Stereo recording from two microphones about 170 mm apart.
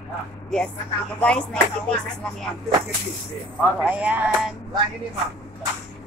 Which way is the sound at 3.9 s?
10° right (ahead or behind).